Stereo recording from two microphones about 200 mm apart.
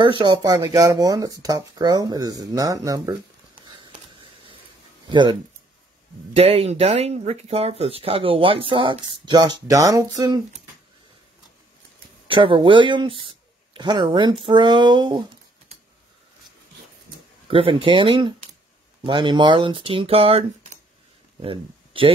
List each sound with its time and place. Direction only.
0.0 s speech: 25° right (ahead or behind)
3.6 s a sound: 25° right (ahead or behind)
5.0 s speech: 25° right (ahead or behind)
12.3 s speech: 25° right (ahead or behind)
17.5 s speech: 25° right (ahead or behind)